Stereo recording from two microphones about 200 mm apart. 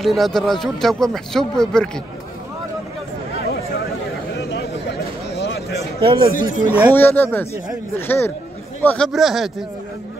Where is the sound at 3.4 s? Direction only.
50° left (ahead or behind).